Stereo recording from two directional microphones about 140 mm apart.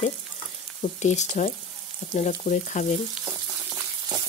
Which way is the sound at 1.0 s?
55° left (ahead or behind).